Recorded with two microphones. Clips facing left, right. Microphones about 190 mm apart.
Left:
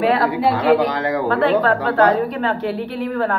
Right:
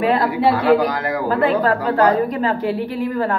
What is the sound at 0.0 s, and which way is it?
A woman's voice, centre (ahead or behind).